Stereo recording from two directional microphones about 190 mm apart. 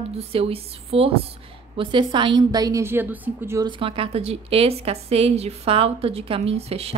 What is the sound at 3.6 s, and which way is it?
Speech, 25° right (ahead or behind).